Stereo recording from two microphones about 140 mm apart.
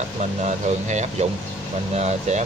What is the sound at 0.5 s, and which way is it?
Speech, 55° right (ahead or behind).